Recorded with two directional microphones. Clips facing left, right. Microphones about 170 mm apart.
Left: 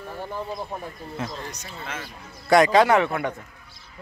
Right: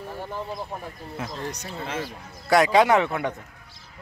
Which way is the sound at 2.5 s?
10° right (ahead or behind).